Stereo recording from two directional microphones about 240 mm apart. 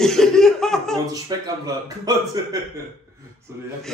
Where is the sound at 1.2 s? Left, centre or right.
Centre.